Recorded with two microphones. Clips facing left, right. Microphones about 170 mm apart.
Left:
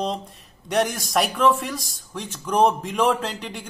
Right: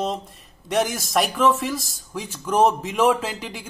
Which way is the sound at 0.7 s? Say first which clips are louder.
Even; centre (ahead or behind).